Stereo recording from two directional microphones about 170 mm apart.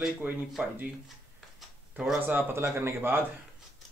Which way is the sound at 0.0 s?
Centre (ahead or behind).